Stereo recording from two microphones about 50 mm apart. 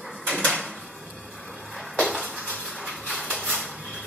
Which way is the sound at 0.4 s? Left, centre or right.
Left.